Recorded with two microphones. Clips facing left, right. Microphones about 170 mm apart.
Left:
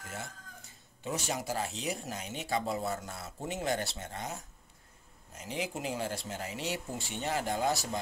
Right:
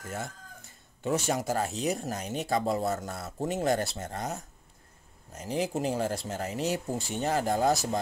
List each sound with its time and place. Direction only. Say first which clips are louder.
1.0 s speech: right 7 dB; 50° right (ahead or behind)